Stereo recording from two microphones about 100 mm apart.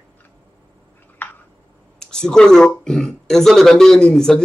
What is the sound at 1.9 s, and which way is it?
Speech, 5° left (ahead or behind).